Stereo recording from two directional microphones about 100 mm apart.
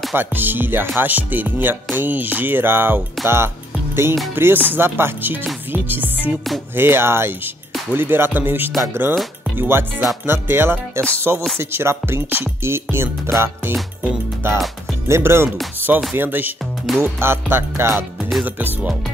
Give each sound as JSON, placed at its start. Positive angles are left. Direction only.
{"t": 0.1, "sound": "music", "side_deg": -20}